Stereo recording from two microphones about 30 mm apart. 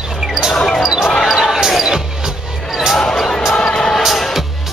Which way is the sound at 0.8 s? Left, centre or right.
Right.